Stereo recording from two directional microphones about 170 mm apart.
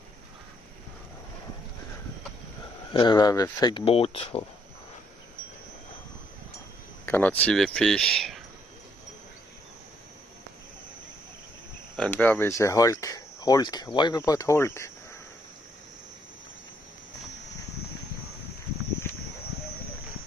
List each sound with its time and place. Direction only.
2.9 s speech: 25° left (ahead or behind)
7.1 s speech: 10° left (ahead or behind)
12.0 s speech: 10° left (ahead or behind)